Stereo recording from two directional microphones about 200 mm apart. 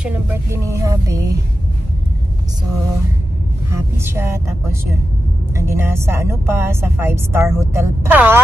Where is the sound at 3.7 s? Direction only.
10° right (ahead or behind).